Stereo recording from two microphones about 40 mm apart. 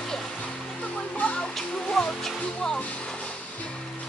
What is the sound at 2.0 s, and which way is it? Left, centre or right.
Music, centre.